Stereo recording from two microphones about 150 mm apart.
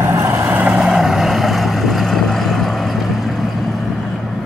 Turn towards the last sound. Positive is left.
turn(degrees=0)  # may be behind; listen again after turning